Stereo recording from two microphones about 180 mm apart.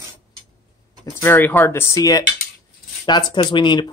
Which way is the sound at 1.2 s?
10° left (ahead or behind).